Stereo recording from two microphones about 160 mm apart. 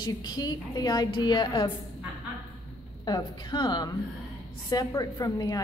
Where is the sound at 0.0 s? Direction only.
25° left (ahead or behind).